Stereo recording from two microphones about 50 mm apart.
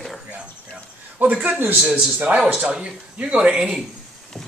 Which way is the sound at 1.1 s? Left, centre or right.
Right.